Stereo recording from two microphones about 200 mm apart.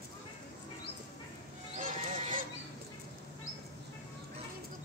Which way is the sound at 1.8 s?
40° right (ahead or behind).